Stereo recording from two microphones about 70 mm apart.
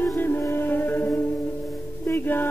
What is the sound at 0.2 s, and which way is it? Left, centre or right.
Music, left.